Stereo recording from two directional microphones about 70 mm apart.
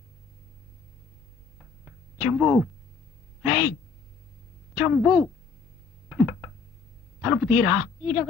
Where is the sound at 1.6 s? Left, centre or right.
Centre.